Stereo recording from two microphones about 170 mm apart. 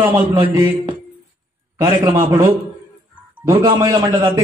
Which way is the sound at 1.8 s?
25° right (ahead or behind).